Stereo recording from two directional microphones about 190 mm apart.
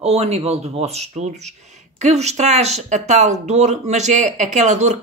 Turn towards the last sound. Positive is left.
turn(degrees=-40)  # may be behind; listen again after turning